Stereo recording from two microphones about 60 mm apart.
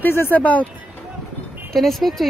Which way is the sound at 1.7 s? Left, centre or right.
Centre.